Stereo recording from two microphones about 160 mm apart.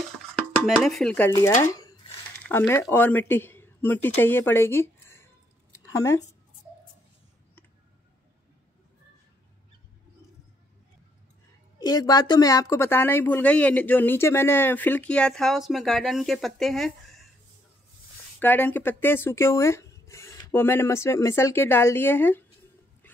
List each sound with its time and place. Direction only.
0.7 s speech: centre (ahead or behind)
1.7 s a sound: 25° left (ahead or behind)
2.4 s speech: 10° left (ahead or behind)
11.8 s speech: 25° left (ahead or behind); by 17.2 s centre (ahead or behind)
18.4 s speech: 10° left (ahead or behind)